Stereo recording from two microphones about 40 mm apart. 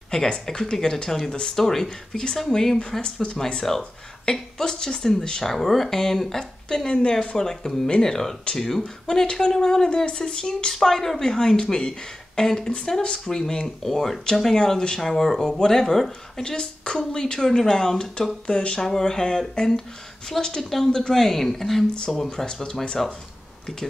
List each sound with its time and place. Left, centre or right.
0.1 s speech: centre
3.0 s speech: left
3.7 s speech: centre
18.5 s speech: left
18.8 s speech: centre
22.3 s speech: centre